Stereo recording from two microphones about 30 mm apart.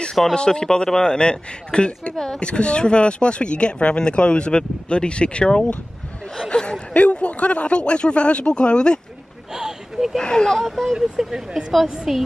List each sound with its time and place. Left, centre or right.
0.3 s speech: left
9.5 s a sound: centre
10.2 s speech: left
10.5 s speech: centre
11.0 s a woman's voice: centre